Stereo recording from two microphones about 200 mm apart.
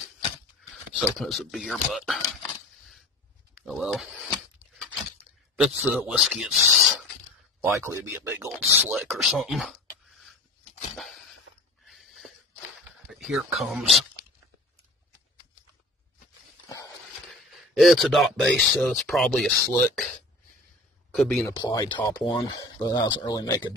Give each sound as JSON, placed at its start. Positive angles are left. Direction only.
{"t": 1.0, "sound": "speech", "side_deg": 5}
{"t": 3.5, "sound": "speech", "side_deg": -5}
{"t": 5.6, "sound": "speech", "side_deg": 0}
{"t": 7.6, "sound": "speech", "side_deg": -10}
{"t": 11.8, "sound": "a sound", "side_deg": 0}
{"t": 13.1, "sound": "speech", "side_deg": 0}
{"t": 17.3, "sound": "a sound", "side_deg": 0}
{"t": 18.8, "sound": "speech", "side_deg": 0}
{"t": 21.1, "sound": "speech", "side_deg": 0}
{"t": 21.5, "sound": "speech", "side_deg": 15}